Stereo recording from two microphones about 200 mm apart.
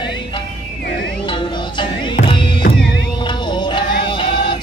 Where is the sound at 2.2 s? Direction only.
25° left (ahead or behind).